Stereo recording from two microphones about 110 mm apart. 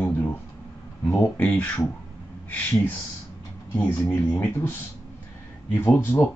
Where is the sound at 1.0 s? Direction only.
20° left (ahead or behind).